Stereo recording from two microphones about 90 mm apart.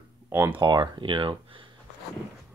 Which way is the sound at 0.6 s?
55° right (ahead or behind).